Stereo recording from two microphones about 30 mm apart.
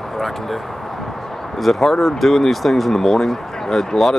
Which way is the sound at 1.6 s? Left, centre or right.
Centre.